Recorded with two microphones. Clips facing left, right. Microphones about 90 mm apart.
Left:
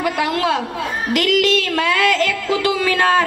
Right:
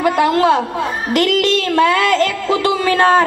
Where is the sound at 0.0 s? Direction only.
35° right (ahead or behind).